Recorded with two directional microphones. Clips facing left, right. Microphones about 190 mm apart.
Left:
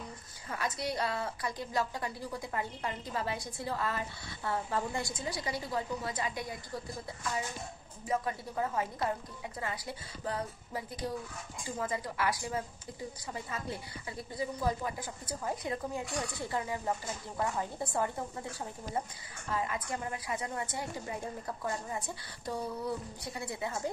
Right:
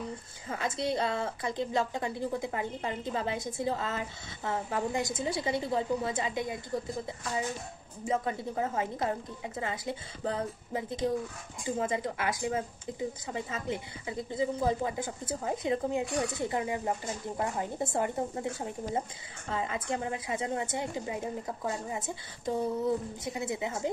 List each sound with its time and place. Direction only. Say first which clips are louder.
0.5 s speech: right 4 dB; 25° right (ahead or behind)
8.0 s speech: right 3 dB; 25° right (ahead or behind)